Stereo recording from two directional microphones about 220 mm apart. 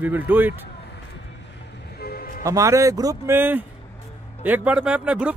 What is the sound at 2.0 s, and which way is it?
Music, 45° left (ahead or behind).